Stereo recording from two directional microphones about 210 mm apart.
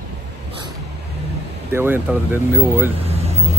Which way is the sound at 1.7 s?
10° right (ahead or behind).